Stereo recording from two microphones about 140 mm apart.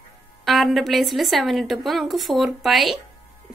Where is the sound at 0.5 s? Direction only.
Centre (ahead or behind).